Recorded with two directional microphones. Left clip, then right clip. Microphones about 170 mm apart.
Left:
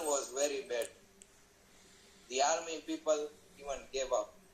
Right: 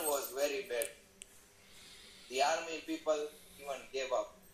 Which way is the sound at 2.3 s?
25° left (ahead or behind).